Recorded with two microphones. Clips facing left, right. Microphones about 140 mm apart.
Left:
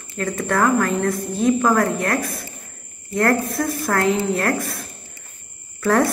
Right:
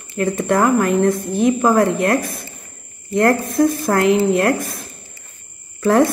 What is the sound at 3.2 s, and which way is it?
A woman's voice, 20° right (ahead or behind).